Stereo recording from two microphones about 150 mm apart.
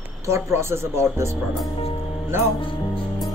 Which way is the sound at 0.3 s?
20° right (ahead or behind).